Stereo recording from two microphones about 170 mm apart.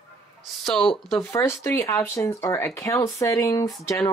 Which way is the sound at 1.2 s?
15° left (ahead or behind).